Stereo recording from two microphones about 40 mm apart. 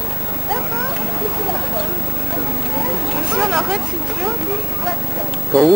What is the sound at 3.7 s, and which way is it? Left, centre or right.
Vehicle, centre.